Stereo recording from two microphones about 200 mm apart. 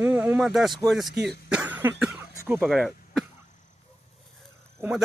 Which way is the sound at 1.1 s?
55° right (ahead or behind).